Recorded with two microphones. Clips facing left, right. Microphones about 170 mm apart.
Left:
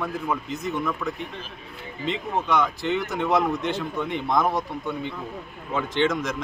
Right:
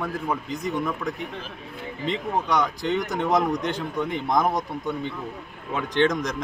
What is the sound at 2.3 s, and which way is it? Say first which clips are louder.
A man's voice: left 1 dB; 15° right (ahead or behind).